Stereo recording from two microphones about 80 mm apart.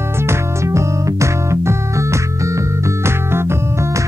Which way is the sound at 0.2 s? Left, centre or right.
Right.